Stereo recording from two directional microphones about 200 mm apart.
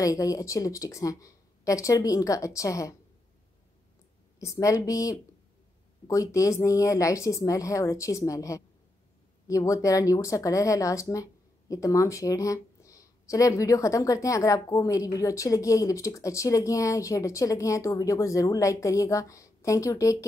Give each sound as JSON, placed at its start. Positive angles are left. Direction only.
{"t": 0.0, "sound": "speech", "side_deg": 15}
{"t": 4.4, "sound": "speech", "side_deg": 15}